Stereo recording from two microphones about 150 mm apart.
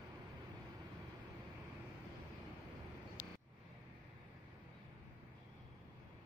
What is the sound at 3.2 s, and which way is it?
Vehicle, 25° left (ahead or behind).